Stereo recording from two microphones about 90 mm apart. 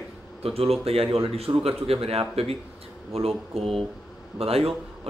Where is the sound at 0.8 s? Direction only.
90° right.